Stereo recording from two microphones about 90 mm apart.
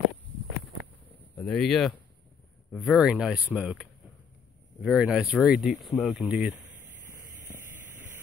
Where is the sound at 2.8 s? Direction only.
10° right (ahead or behind).